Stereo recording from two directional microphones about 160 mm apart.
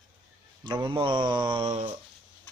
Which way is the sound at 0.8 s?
30° right (ahead or behind).